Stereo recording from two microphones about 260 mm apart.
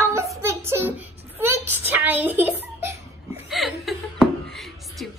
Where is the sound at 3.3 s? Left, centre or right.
Centre.